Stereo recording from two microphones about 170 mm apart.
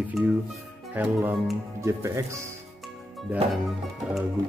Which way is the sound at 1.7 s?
15° right (ahead or behind).